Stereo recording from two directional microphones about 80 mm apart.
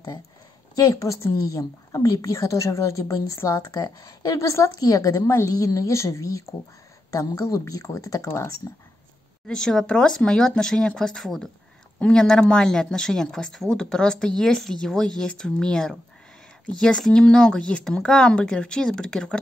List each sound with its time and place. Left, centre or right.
0.7 s speech: left
3.8 s speech: left
9.5 s speech: centre